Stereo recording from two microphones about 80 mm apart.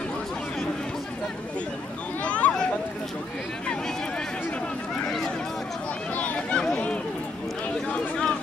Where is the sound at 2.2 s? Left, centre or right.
Centre.